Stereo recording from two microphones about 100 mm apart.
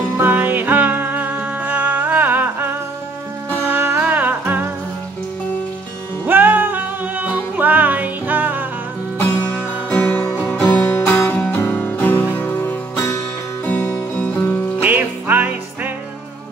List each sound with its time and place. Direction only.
0.2 s music: 20° right (ahead or behind)
6.2 s music: 20° right (ahead or behind)
9.8 s music: 15° left (ahead or behind)
13.7 s music: 15° left (ahead or behind)
14.8 s music: 15° right (ahead or behind)